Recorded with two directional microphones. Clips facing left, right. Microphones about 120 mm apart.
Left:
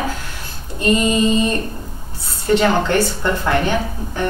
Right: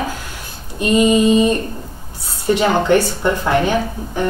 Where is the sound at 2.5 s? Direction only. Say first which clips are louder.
Right 2 dB; 15° right (ahead or behind).